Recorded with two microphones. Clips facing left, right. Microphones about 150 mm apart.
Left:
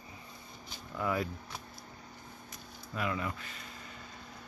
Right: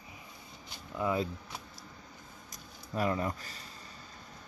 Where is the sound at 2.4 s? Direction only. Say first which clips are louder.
Even; 40° right (ahead or behind).